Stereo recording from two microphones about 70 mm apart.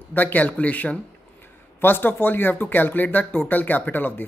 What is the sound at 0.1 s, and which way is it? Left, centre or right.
Speech, left.